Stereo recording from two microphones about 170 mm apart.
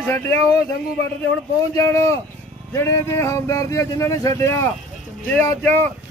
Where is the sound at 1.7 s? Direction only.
20° left (ahead or behind).